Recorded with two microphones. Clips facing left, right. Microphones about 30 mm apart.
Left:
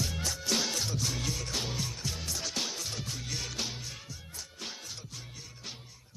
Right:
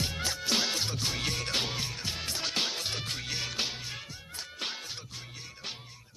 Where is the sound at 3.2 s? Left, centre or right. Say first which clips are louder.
Right 2 dB; right.